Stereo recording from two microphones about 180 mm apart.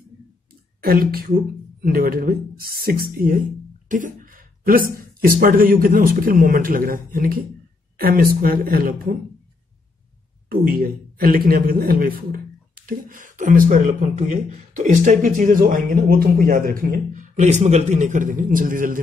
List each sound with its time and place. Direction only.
0.8 s a man's voice: 55° right (ahead or behind)
10.5 s a man's voice: 55° right (ahead or behind)